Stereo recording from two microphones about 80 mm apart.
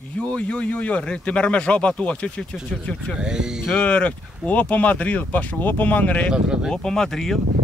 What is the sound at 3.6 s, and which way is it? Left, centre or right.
Speech, centre.